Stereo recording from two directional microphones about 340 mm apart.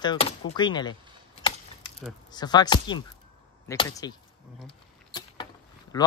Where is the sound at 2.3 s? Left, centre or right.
Centre.